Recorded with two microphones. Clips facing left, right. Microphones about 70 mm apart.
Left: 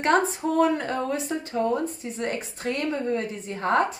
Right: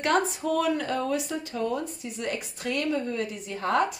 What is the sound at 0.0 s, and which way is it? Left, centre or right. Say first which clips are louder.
A woman's voice: left 3 dB; left.